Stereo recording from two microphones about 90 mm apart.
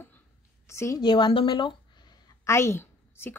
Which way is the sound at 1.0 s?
65° left (ahead or behind).